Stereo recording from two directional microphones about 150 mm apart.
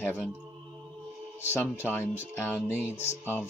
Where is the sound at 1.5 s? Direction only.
15° left (ahead or behind).